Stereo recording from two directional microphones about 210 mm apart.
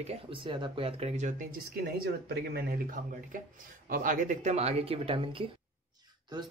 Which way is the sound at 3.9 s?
40° right (ahead or behind).